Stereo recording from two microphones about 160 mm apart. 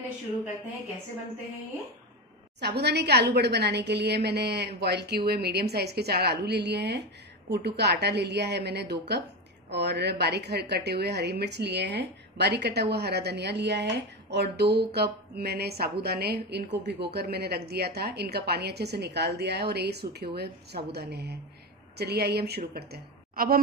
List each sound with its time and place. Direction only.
2.6 s a woman's voice: 90° right
22.8 s a woman's voice: 75° right (ahead or behind)